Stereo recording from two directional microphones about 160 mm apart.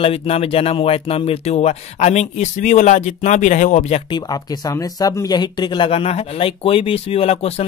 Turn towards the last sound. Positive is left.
turn(degrees=40)  # may be behind; listen again after turning